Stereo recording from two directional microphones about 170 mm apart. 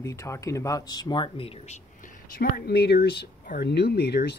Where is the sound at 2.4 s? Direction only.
70° left (ahead or behind).